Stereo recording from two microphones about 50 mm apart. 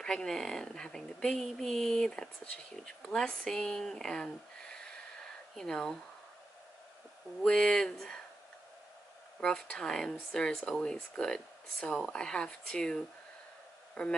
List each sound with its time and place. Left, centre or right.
0.0 s speech: centre
7.4 s speech: centre
9.4 s speech: centre